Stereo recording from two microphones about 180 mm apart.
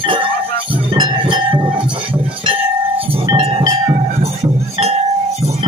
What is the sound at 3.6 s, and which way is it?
Music, 20° right (ahead or behind).